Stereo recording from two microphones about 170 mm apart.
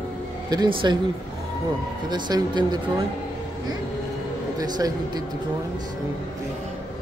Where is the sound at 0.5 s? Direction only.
25° right (ahead or behind).